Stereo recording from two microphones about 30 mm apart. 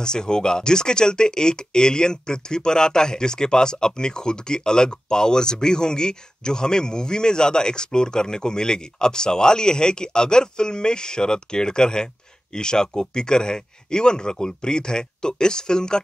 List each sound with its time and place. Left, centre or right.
0.0 s speech: left